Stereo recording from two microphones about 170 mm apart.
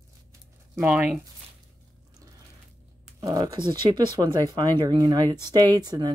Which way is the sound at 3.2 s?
20° right (ahead or behind).